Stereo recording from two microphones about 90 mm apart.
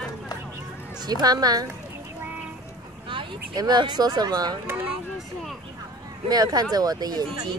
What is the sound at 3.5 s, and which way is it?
Speech, 50° right (ahead or behind).